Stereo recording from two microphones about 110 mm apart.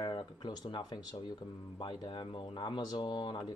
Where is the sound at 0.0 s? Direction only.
45° left (ahead or behind).